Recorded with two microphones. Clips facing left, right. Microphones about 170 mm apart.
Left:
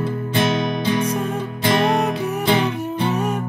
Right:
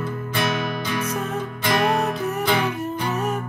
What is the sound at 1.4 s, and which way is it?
Music, 25° left (ahead or behind).